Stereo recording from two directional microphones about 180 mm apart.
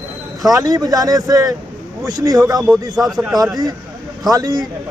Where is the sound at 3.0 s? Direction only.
Centre (ahead or behind).